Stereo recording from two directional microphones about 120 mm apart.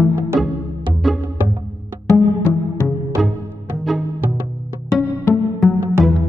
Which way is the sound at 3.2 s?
Centre (ahead or behind).